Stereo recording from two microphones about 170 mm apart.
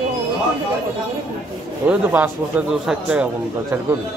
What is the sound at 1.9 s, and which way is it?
A man's voice, 10° right (ahead or behind).